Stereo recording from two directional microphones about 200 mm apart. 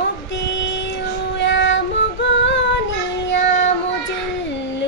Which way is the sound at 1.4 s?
65° left (ahead or behind).